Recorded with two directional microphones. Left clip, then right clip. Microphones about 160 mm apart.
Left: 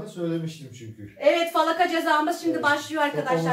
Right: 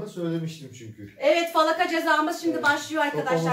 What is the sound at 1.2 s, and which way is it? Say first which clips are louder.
A woman's voice: even; 10° left (ahead or behind).